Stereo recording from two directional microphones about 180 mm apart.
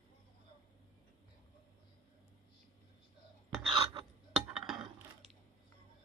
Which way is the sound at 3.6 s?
30° right (ahead or behind).